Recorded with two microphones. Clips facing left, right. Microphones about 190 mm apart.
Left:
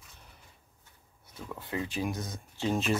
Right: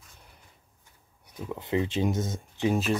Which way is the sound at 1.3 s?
15° right (ahead or behind).